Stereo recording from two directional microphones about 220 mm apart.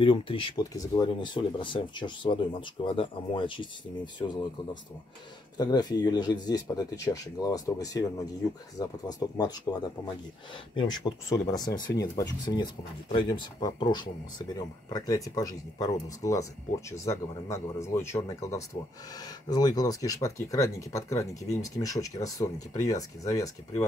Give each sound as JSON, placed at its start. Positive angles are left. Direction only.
{"t": 0.0, "sound": "speech", "side_deg": 25}
{"t": 5.6, "sound": "speech", "side_deg": 20}